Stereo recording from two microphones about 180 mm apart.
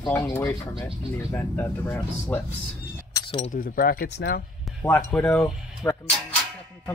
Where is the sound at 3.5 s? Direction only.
50° left (ahead or behind); by 4.4 s 65° left (ahead or behind).